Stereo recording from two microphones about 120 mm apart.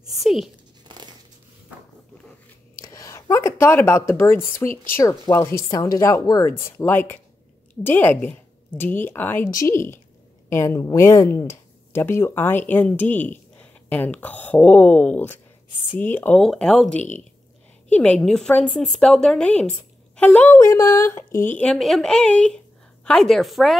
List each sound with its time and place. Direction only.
0.1 s speech: centre (ahead or behind)
2.8 s a woman's voice: 25° left (ahead or behind)
16.3 s speech: 5° left (ahead or behind)
20.6 s speech: 25° left (ahead or behind)
21.6 s speech: centre (ahead or behind)